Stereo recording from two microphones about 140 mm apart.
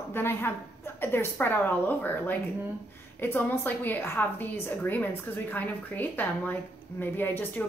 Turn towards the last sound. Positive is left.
turn(degrees=15)  # may be behind; listen again after turning